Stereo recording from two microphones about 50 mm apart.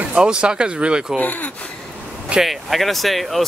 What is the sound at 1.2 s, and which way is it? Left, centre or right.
Speech, left.